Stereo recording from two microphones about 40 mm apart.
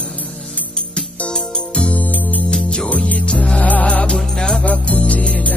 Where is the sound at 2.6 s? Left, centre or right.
Left.